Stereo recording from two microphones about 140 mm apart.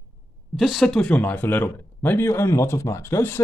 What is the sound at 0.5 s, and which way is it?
A man's voice, centre (ahead or behind).